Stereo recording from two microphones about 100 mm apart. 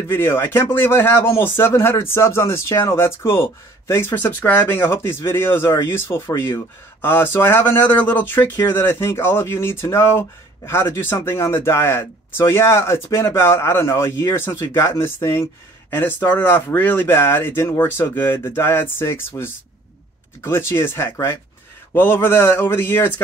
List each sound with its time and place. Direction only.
0.1 s speech: 20° left (ahead or behind)